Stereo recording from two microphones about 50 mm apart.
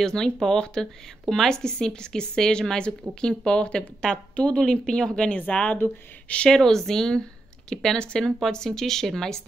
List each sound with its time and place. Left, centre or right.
0.0 s a woman's voice: centre
6.5 s a woman's voice: centre